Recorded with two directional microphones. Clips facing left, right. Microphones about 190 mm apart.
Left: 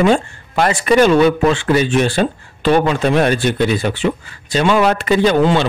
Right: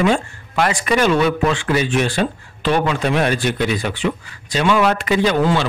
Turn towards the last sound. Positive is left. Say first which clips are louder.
# left 3 dB
turn(degrees=35)  # may be behind; listen again after turning